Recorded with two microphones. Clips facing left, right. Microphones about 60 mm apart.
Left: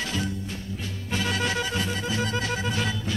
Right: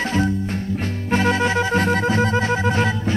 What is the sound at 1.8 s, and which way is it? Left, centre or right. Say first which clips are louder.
Music: right 10 dB; right.